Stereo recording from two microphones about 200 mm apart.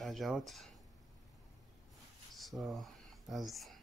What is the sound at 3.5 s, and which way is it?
Speech, centre (ahead or behind).